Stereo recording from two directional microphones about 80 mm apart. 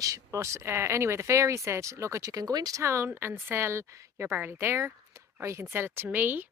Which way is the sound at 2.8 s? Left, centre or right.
Right.